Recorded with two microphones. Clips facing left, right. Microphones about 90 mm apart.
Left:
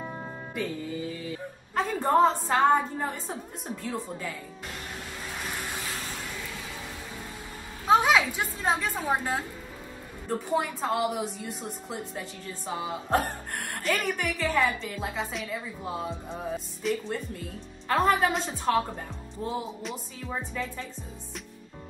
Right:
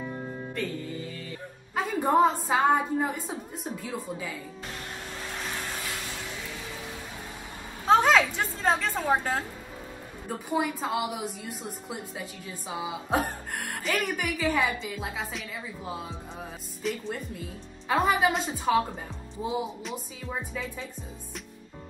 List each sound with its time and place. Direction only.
0.0 s music: 15° left (ahead or behind)
1.8 s a woman's voice: 10° right (ahead or behind)
5.4 s vehicle: 15° left (ahead or behind)
7.8 s a woman's voice: 5° left (ahead or behind)
10.2 s a woman's voice: 5° right (ahead or behind)